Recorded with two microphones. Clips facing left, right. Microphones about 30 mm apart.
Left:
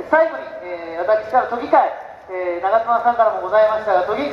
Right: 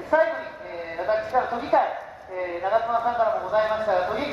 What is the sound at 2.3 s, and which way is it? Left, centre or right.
Speech, left.